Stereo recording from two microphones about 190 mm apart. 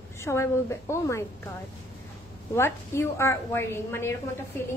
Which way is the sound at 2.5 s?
15° left (ahead or behind).